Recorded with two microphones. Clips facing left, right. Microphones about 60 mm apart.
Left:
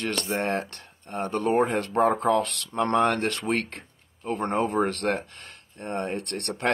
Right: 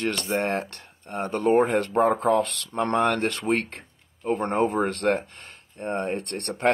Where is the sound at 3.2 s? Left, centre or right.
Right.